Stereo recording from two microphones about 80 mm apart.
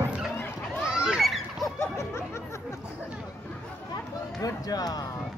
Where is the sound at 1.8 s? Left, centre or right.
Left.